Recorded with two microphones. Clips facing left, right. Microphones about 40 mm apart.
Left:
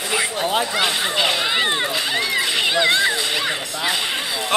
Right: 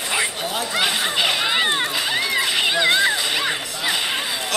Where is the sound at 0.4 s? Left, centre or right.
Left.